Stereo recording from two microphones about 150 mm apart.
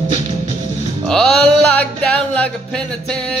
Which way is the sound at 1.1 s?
5° left (ahead or behind).